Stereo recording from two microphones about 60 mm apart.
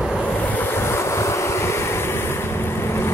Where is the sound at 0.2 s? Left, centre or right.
Left.